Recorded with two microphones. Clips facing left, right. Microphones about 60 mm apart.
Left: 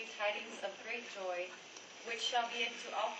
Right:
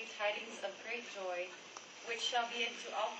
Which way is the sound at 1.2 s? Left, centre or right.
Right.